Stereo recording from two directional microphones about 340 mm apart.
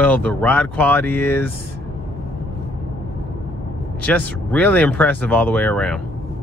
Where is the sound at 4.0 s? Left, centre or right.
Centre.